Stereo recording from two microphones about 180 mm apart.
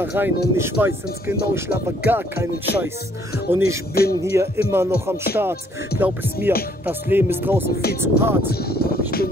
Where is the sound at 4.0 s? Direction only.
60° left (ahead or behind).